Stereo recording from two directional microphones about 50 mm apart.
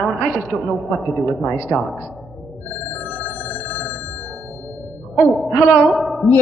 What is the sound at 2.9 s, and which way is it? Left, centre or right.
Music, left.